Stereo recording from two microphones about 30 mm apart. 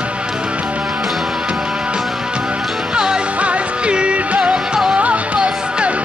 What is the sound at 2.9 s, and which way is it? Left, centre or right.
Music, right.